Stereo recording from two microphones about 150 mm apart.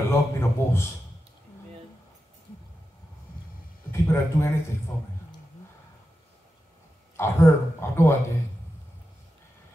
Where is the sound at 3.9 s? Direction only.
15° left (ahead or behind).